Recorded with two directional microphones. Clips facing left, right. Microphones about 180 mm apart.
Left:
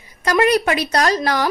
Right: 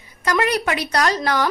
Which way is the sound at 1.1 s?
15° left (ahead or behind).